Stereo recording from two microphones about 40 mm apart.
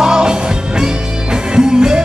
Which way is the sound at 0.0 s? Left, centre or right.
Centre.